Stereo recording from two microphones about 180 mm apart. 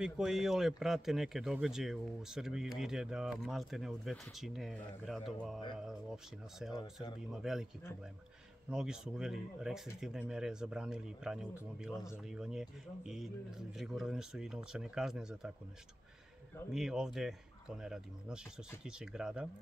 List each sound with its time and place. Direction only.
0.0 s speech: 5° right (ahead or behind)
6.8 s speech: 25° left (ahead or behind)
7.2 s speech: 5° right (ahead or behind)
8.6 s speech: 5° right (ahead or behind)
16.7 s speech: 5° right (ahead or behind)